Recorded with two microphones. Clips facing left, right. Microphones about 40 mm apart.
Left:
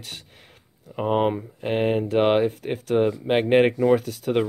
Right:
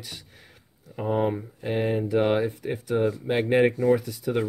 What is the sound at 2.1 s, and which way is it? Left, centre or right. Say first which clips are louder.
Speech: left 3 dB; left.